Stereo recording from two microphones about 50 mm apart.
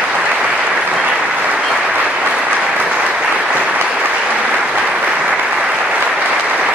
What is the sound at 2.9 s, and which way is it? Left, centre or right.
Applause, right.